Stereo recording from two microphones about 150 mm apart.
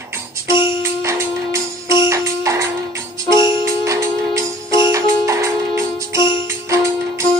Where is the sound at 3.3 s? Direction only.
30° left (ahead or behind).